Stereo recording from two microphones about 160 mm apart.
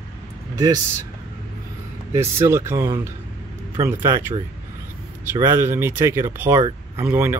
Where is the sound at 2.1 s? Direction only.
15° right (ahead or behind).